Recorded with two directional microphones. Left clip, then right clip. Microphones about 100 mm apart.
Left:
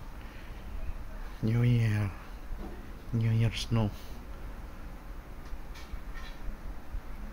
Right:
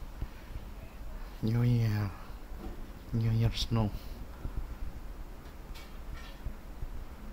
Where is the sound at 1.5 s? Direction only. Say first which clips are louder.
Left 2 dB; 15° right (ahead or behind).